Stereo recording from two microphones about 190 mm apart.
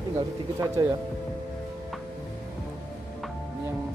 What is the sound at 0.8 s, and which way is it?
Speech, 15° right (ahead or behind).